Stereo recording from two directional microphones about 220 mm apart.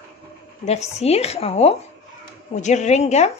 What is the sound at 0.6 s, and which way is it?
A woman's voice, 30° left (ahead or behind).